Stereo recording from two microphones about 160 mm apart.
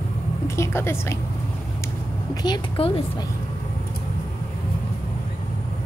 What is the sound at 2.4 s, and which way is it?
Speech, 30° left (ahead or behind).